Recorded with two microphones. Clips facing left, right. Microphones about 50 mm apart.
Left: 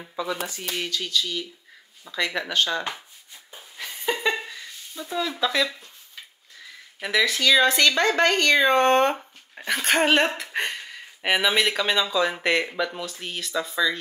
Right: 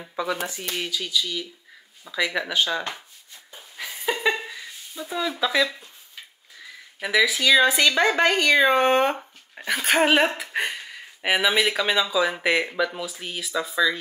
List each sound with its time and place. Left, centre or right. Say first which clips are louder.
0.1 s speech: right 2 dB; right
0.6 s speech: even; centre
3.5 s a sound: right 1 dB; centre
7.0 s speech: right 2 dB; centre